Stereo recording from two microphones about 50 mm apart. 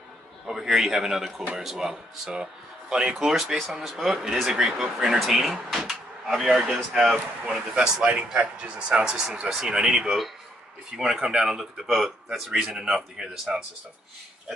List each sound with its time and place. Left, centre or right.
0.5 s speech: centre